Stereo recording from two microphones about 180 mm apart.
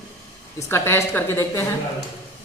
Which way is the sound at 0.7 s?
15° left (ahead or behind).